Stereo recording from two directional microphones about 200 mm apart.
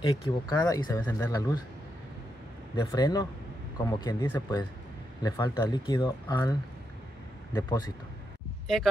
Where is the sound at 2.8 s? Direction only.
20° left (ahead or behind).